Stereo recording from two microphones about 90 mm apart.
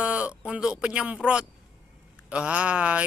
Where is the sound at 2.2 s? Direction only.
15° right (ahead or behind).